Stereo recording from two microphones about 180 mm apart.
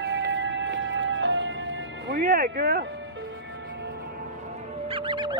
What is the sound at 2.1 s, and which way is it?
Music, 50° right (ahead or behind).